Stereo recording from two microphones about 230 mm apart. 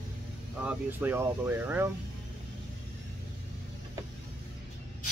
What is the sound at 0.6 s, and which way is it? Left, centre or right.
Speech, centre.